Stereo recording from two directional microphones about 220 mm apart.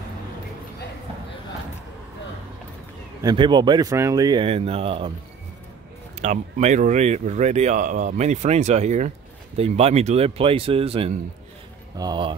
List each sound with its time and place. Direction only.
3.2 s speech: 20° right (ahead or behind)
6.2 s speech: 30° right (ahead or behind)